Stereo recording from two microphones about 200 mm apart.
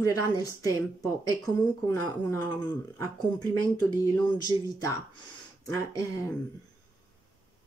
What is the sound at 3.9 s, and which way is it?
Speech, 20° left (ahead or behind).